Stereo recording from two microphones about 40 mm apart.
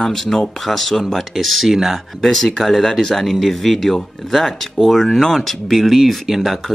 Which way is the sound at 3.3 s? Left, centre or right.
Centre.